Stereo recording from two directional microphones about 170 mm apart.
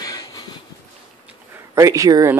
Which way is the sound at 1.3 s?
15° right (ahead or behind).